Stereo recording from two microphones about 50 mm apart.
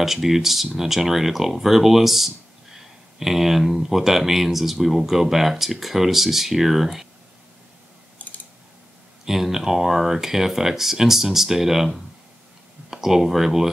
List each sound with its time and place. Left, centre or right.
0.0 s speech: centre
8.2 s typing: left
9.2 s speech: centre